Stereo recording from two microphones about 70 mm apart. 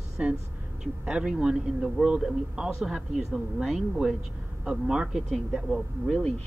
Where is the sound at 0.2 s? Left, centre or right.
Centre.